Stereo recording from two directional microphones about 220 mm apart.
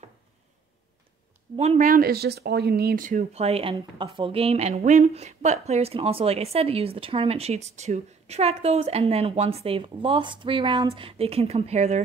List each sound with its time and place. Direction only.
1.8 s speech: 40° right (ahead or behind)